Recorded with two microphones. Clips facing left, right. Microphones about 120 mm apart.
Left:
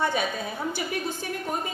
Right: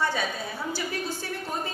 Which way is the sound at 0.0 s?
20° left (ahead or behind).